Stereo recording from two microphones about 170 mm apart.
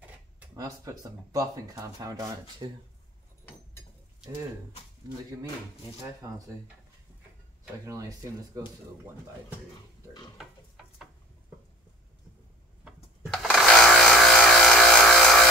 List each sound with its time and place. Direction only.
0.6 s speech: 20° right (ahead or behind)
6.2 s speech: 20° right (ahead or behind)
7.8 s speech: 20° right (ahead or behind)
12.8 s a sound: 5° right (ahead or behind)